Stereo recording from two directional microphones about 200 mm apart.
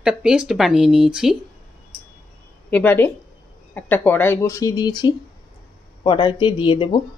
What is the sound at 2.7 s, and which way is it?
Speech, 10° left (ahead or behind).